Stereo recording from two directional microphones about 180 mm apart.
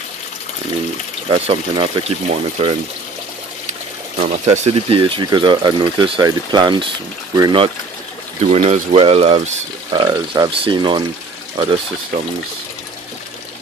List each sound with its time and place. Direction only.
1.3 s speech: 30° right (ahead or behind)
4.2 s speech: 35° right (ahead or behind)
8.5 s speech: 35° right (ahead or behind)
9.9 s speech: 20° right (ahead or behind)